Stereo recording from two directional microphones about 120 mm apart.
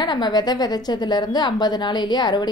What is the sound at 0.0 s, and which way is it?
A woman's voice, 35° left (ahead or behind).